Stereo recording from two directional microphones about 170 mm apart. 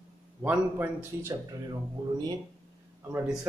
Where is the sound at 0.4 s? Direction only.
10° right (ahead or behind).